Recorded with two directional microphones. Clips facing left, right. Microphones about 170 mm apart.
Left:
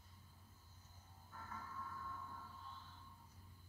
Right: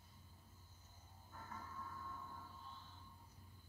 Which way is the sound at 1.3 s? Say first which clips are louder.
Even; 20° right (ahead or behind).